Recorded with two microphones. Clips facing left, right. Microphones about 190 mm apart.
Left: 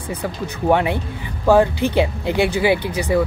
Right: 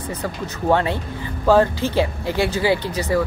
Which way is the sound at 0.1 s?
15° left (ahead or behind).